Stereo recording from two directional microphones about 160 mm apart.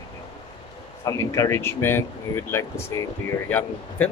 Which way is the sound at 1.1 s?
20° left (ahead or behind).